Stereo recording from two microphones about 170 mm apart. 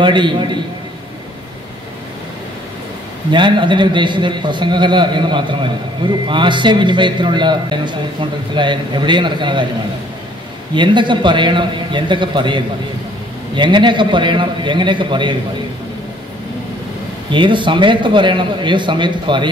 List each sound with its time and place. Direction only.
0.0 s a man's voice: 30° right (ahead or behind)
3.3 s a man's voice: 30° right (ahead or behind)
10.7 s a man's voice: 30° right (ahead or behind)
17.3 s a man's voice: 30° right (ahead or behind)